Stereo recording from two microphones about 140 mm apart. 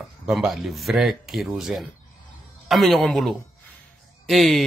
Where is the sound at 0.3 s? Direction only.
Centre (ahead or behind).